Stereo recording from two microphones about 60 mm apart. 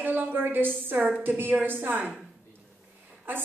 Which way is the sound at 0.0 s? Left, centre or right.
Right.